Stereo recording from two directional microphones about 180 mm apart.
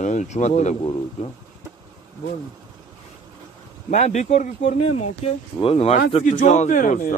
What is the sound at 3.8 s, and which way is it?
Speech, 40° left (ahead or behind).